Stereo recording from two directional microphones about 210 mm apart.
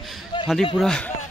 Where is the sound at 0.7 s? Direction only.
Centre (ahead or behind).